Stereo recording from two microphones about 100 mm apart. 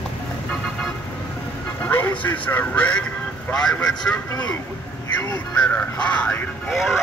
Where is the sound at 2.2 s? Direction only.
20° left (ahead or behind).